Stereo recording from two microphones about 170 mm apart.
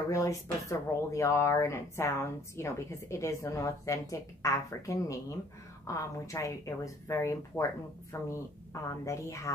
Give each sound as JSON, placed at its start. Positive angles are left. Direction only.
{"t": 0.1, "sound": "a woman's voice", "side_deg": 20}